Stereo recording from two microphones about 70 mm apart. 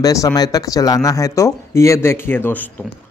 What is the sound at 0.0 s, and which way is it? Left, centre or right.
Speech, left.